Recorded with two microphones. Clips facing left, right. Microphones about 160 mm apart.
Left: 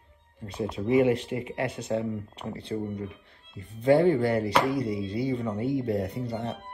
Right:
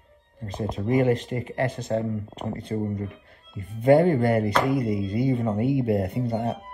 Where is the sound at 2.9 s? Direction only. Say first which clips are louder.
Right 3 dB; centre (ahead or behind).